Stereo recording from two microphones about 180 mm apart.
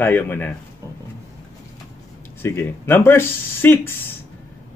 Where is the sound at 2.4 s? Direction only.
10° left (ahead or behind).